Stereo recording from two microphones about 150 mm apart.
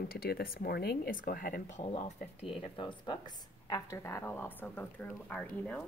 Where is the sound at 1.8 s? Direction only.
50° left (ahead or behind).